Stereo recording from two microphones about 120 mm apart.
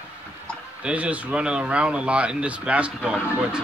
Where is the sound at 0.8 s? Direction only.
10° right (ahead or behind).